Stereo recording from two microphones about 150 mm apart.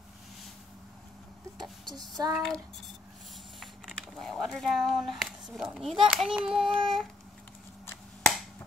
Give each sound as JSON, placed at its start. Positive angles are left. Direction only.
{"t": 2.0, "sound": "child singing", "side_deg": -25}
{"t": 2.3, "sound": "a sound", "side_deg": 5}
{"t": 3.5, "sound": "speech", "side_deg": 0}
{"t": 7.8, "sound": "finger snapping", "side_deg": 15}